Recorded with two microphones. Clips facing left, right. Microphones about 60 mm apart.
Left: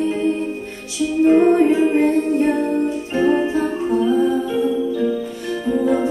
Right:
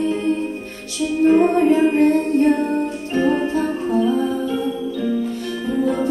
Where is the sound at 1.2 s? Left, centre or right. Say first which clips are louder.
Left 1 dB; centre.